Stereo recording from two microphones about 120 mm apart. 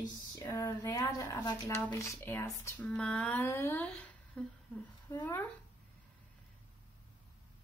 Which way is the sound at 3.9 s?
5° left (ahead or behind).